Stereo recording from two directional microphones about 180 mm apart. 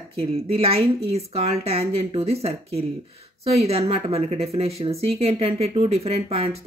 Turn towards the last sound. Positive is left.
turn(degrees=-35)  # may be behind; listen again after turning